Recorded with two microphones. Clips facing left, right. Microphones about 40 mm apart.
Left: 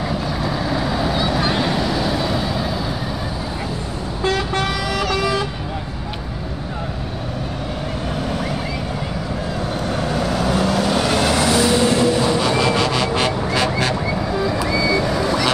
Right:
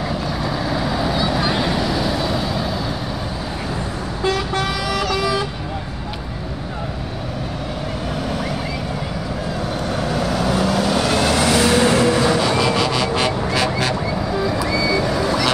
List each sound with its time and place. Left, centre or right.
0.1 s vehicle: centre
4.3 s vehicle: centre
9.8 s vehicle: centre
11.6 s vehicle: right
12.4 s vehicle: centre